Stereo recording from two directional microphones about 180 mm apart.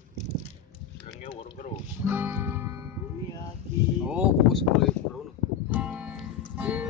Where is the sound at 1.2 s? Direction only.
30° left (ahead or behind).